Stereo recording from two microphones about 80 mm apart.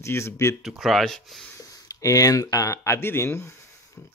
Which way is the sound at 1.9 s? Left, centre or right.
Left.